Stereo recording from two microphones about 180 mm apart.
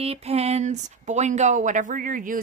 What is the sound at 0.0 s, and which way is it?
Speech, 35° right (ahead or behind).